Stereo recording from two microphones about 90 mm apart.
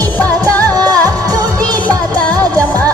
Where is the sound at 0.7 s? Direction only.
45° right (ahead or behind).